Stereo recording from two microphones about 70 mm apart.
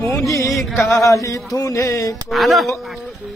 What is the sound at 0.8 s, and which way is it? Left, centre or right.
Carnatic music, left.